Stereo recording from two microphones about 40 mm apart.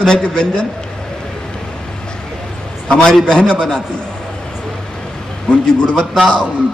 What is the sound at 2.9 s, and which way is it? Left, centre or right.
Speech, centre.